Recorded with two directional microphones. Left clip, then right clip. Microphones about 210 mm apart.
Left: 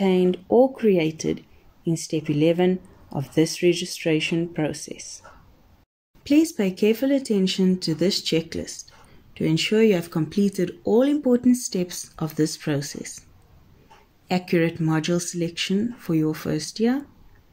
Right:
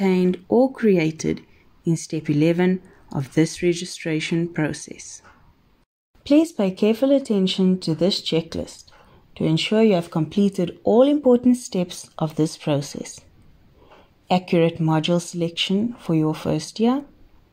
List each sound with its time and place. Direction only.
0.0 s speech: 25° right (ahead or behind)
6.2 s speech: 15° right (ahead or behind)
14.2 s speech: 15° right (ahead or behind)